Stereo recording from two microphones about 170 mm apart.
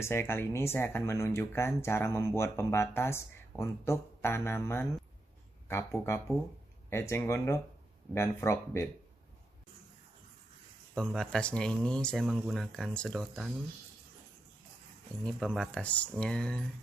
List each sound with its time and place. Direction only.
0.0 s speech: 15° left (ahead or behind)
11.0 s speech: 5° left (ahead or behind)
15.2 s speech: 5° left (ahead or behind)